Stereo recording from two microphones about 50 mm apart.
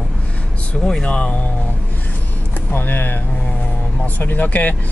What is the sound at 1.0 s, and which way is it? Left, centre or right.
Speech, left.